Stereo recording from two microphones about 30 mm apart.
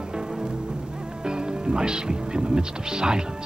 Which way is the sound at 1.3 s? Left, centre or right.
Right.